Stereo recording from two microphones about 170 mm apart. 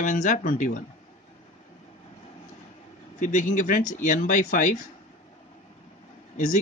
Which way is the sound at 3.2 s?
50° left (ahead or behind).